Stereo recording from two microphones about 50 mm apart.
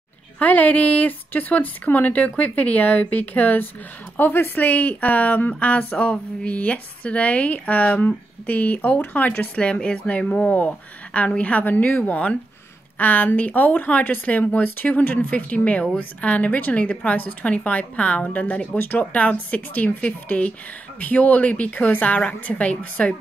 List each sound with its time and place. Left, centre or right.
0.4 s speech: left
4.2 s a woman's voice: left
4.6 s a woman's voice: left
17.2 s a woman's voice: left
18.8 s speech: left
19.1 s a woman's voice: left